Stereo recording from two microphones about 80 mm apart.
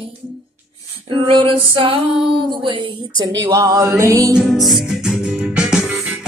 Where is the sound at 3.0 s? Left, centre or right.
Right.